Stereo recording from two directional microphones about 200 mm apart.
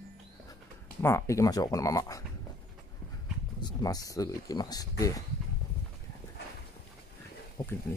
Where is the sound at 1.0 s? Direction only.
15° left (ahead or behind).